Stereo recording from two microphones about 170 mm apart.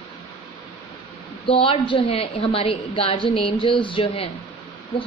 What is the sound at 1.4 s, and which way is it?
A woman's voice, 30° left (ahead or behind).